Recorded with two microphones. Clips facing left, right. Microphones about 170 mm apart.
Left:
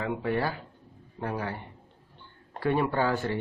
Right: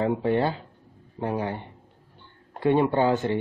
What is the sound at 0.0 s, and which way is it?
Speech, 30° right (ahead or behind).